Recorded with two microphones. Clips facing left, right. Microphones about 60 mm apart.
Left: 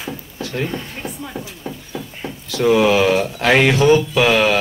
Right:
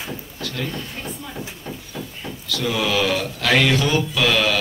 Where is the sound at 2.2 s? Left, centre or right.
Left.